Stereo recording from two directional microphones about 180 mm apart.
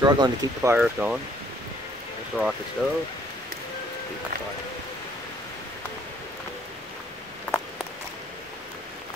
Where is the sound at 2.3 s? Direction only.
Centre (ahead or behind).